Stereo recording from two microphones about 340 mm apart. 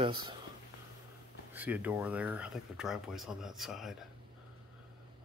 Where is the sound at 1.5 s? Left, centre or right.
Centre.